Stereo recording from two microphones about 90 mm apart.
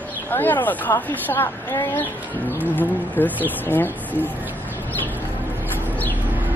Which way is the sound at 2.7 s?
20° left (ahead or behind).